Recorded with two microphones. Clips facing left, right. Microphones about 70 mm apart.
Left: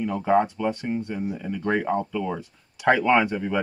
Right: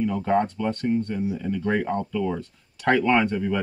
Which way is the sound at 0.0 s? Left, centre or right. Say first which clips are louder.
Left 1 dB; centre.